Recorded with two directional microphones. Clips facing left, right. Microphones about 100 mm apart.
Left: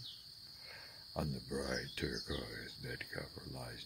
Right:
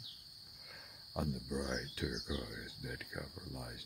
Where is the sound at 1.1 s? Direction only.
10° right (ahead or behind).